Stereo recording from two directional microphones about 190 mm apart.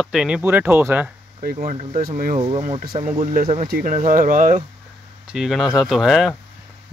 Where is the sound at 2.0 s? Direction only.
45° right (ahead or behind).